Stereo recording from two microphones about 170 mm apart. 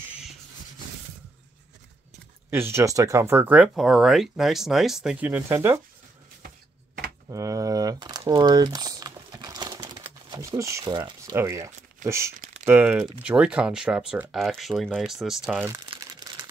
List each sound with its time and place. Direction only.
2.5 s speech: 15° right (ahead or behind)
7.2 s crumpling: 20° right (ahead or behind)
10.3 s speech: 15° right (ahead or behind)